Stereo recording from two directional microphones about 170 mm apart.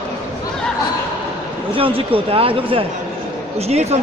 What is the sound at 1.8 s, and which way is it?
Speech, 30° right (ahead or behind).